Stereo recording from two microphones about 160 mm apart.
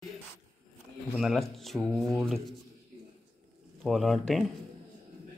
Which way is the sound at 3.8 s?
Centre (ahead or behind).